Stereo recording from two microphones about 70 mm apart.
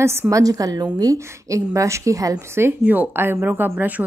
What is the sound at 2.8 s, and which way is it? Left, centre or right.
A woman's voice, right.